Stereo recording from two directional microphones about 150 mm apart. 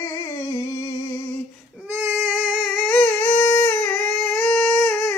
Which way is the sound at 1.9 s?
15° right (ahead or behind).